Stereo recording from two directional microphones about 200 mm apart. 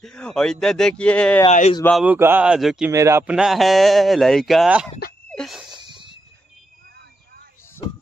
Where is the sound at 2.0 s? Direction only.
10° right (ahead or behind).